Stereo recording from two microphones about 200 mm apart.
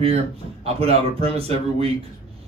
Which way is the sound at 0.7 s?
30° right (ahead or behind).